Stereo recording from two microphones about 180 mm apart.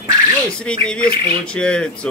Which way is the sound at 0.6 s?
5° left (ahead or behind).